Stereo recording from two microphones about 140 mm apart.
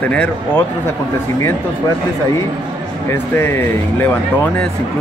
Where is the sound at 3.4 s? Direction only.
15° left (ahead or behind).